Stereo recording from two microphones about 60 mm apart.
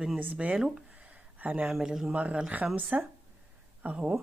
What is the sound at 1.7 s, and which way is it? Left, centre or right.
Speech, centre.